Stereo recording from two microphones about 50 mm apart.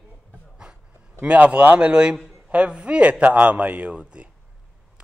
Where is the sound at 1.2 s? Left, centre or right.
Right.